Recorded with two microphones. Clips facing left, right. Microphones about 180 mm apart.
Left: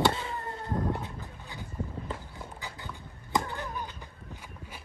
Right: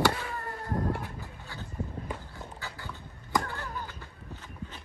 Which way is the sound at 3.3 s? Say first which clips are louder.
Even; 20° left (ahead or behind).